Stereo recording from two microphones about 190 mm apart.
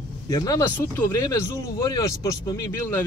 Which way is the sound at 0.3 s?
20° left (ahead or behind).